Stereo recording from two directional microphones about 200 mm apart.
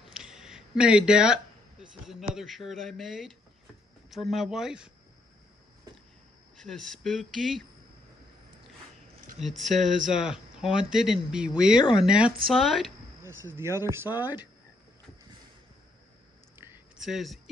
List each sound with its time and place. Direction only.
0.0 s a sound: 5° right (ahead or behind)
2.3 s speech: centre (ahead or behind)
6.6 s speech: centre (ahead or behind)
9.4 s speech: centre (ahead or behind)
13.2 s speech: 15° right (ahead or behind)
16.5 s a sound: 5° right (ahead or behind)